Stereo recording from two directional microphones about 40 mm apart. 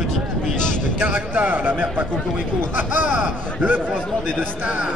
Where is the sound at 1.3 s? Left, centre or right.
Right.